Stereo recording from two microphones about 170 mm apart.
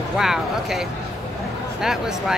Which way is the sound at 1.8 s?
5° right (ahead or behind).